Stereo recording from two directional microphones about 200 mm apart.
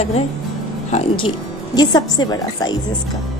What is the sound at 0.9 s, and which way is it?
A woman's voice, 25° left (ahead or behind).